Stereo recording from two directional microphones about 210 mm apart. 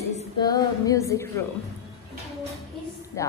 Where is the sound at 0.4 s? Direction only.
15° left (ahead or behind).